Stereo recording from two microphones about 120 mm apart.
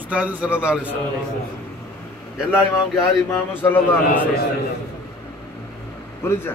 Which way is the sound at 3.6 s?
15° left (ahead or behind).